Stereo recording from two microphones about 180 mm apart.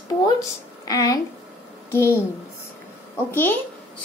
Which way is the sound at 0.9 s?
20° left (ahead or behind).